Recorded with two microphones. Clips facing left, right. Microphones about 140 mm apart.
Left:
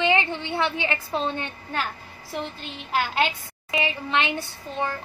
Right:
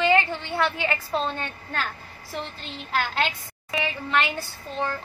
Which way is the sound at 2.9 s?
10° left (ahead or behind).